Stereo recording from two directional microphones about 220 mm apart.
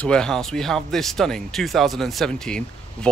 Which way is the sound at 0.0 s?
5° left (ahead or behind).